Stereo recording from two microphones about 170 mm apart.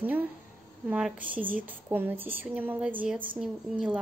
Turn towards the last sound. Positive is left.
turn(degrees=-5)  # may be behind; listen again after turning